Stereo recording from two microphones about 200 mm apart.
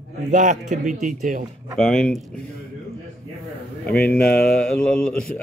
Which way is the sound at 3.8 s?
5° left (ahead or behind).